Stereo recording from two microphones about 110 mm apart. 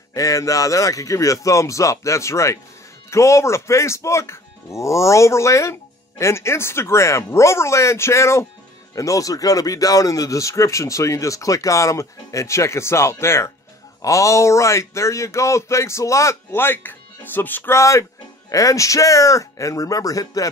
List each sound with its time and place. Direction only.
0.1 s speech: 30° left (ahead or behind)